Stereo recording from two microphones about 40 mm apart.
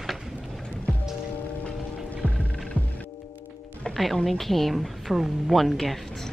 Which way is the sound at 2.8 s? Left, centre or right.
Right.